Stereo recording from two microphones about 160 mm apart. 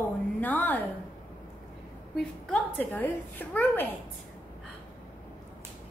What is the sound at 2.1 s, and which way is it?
A woman's voice, 5° left (ahead or behind).